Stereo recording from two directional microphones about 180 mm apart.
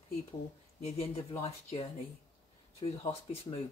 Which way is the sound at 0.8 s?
35° left (ahead or behind).